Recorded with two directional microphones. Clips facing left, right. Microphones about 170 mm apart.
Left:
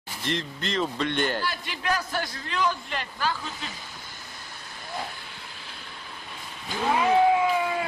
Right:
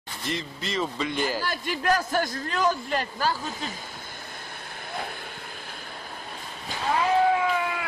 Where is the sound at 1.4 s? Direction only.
45° right (ahead or behind).